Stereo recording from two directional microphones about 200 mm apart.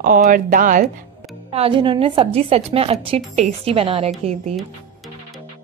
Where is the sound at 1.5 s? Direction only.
25° right (ahead or behind).